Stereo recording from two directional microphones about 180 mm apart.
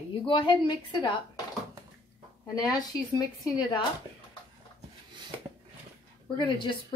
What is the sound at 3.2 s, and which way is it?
Speech, 20° left (ahead or behind).